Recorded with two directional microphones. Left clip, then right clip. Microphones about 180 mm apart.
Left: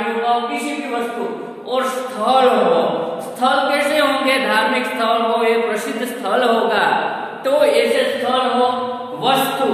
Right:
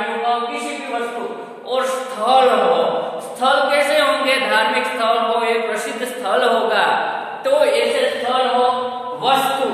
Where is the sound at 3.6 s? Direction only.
10° right (ahead or behind).